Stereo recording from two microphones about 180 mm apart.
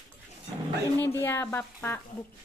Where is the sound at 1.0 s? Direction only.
15° left (ahead or behind).